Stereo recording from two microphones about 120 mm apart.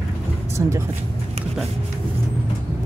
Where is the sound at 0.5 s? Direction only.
25° right (ahead or behind).